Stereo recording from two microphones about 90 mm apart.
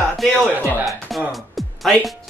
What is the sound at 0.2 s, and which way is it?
Speech, centre (ahead or behind).